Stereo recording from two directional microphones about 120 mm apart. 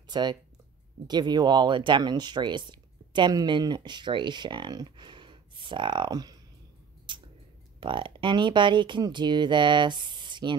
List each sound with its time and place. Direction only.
0.1 s speech: 35° right (ahead or behind)
7.1 s tick-tock: 45° right (ahead or behind)
7.8 s speech: 45° right (ahead or behind)